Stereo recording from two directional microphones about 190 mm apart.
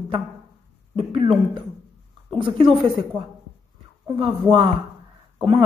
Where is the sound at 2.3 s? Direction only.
25° right (ahead or behind).